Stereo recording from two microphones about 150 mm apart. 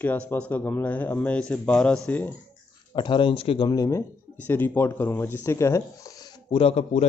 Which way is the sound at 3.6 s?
25° left (ahead or behind).